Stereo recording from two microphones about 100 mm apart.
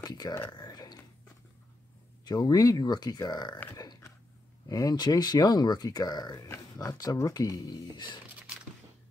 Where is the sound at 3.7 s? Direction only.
40° left (ahead or behind).